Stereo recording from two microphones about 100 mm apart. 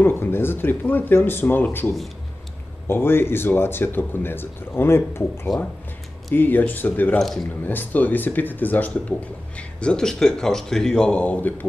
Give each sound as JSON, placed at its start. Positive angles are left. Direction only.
{"t": 0.0, "sound": "speech", "side_deg": 20}
{"t": 7.2, "sound": "speech", "side_deg": 5}
{"t": 7.6, "sound": "speech", "side_deg": 15}